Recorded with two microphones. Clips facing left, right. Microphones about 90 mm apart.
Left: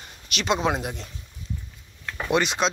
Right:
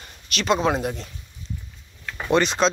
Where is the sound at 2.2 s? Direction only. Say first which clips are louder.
Right 3 dB; 10° left (ahead or behind).